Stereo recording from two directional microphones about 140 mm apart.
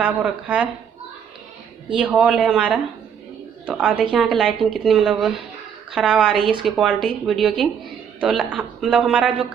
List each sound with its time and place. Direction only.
0.0 s speech: 10° right (ahead or behind)
2.0 s a woman's voice: 10° right (ahead or behind)
6.3 s speech: 40° right (ahead or behind)
6.6 s a woman's voice: 5° right (ahead or behind)